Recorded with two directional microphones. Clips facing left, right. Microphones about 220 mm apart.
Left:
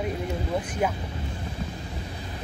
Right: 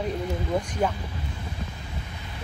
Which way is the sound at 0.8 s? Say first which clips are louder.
Even; 10° left (ahead or behind).